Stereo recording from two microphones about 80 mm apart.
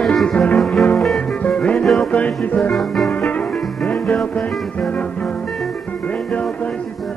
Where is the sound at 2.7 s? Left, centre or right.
Centre.